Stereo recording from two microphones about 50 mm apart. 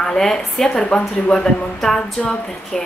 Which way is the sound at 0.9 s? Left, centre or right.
Left.